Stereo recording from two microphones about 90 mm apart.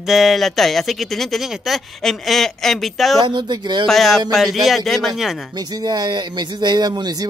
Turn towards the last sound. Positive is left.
turn(degrees=-50)  # may be behind; listen again after turning